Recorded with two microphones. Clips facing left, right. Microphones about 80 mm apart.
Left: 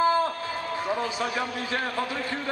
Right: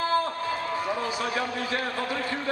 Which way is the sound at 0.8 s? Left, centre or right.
Left.